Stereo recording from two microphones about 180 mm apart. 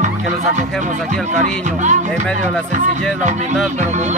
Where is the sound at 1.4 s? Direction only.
40° right (ahead or behind).